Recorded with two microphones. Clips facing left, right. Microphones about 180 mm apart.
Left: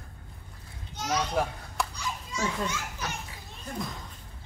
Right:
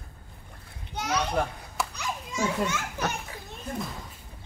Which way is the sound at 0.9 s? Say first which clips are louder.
Right 1 dB; 65° right (ahead or behind).